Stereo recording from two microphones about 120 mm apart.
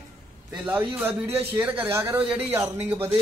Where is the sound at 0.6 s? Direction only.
10° right (ahead or behind).